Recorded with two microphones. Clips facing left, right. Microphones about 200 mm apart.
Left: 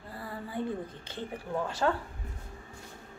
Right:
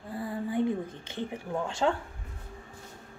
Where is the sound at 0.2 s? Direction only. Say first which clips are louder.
Right 7 dB; 15° right (ahead or behind).